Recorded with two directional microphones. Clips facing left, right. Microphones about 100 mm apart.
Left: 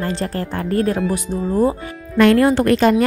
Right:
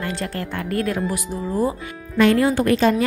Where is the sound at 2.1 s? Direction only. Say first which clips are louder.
Left 4 dB; 65° left (ahead or behind).